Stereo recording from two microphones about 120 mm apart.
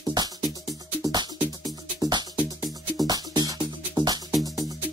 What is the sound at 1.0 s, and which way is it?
Music, 30° right (ahead or behind).